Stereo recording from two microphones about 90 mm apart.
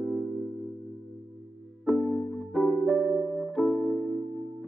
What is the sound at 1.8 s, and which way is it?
Music, centre (ahead or behind).